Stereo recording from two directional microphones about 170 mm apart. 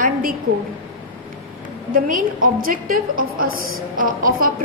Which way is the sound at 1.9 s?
55° right (ahead or behind).